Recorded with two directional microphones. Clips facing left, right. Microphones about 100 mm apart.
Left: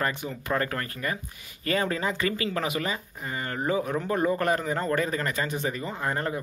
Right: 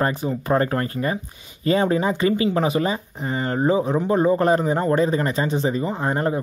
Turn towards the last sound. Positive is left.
turn(degrees=-25)  # may be behind; listen again after turning